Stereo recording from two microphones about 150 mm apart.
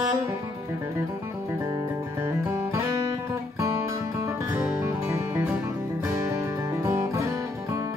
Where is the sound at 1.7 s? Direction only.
20° right (ahead or behind).